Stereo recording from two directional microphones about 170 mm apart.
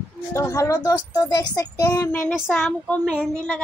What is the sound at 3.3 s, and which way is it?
Speech, 5° left (ahead or behind).